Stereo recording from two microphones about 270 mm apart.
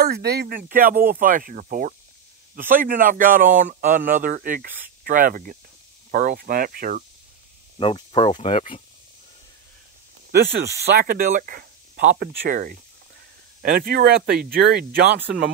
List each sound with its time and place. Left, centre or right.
0.0 s a man's voice: right
7.8 s speech: centre
10.3 s a man's voice: right